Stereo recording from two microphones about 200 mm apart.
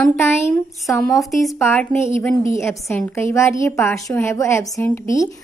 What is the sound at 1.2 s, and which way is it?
Speech, centre (ahead or behind).